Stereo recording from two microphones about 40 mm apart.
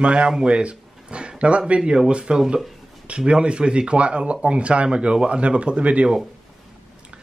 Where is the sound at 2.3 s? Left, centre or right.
Centre.